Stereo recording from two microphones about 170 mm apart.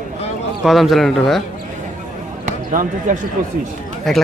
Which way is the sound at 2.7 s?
50° right (ahead or behind).